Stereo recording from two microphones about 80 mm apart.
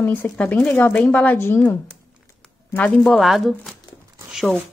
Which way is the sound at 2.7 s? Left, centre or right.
Centre.